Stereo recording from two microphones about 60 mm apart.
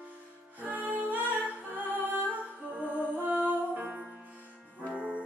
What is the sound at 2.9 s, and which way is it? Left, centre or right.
Music, right.